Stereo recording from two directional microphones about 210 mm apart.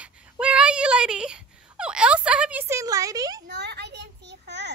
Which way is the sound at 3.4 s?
55° right (ahead or behind).